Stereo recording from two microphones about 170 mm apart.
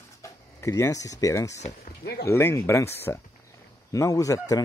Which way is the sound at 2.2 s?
15° left (ahead or behind).